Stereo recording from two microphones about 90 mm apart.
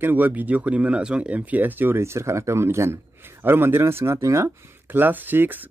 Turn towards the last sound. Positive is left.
turn(degrees=-20)  # may be behind; listen again after turning